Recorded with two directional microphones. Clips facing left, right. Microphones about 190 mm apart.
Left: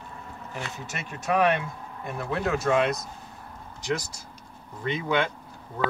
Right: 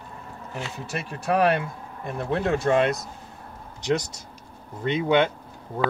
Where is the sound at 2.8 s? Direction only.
Centre (ahead or behind).